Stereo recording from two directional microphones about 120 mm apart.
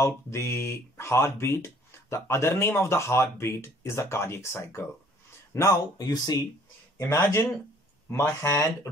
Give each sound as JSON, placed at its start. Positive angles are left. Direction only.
{"t": 0.0, "sound": "speech", "side_deg": 20}